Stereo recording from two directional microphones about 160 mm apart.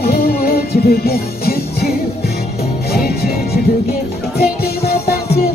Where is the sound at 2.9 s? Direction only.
75° left (ahead or behind).